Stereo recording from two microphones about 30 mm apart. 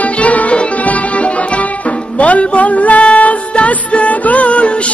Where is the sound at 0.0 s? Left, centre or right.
Left.